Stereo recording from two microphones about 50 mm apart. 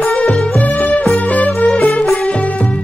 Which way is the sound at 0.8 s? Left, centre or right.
Left.